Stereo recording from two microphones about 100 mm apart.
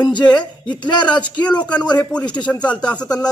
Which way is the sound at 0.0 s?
50° left (ahead or behind).